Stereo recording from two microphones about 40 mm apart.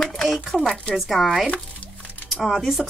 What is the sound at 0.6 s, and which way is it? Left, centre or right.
Speech, left.